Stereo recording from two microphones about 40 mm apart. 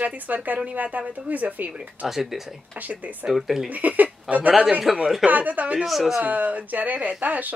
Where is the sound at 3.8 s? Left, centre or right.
Right.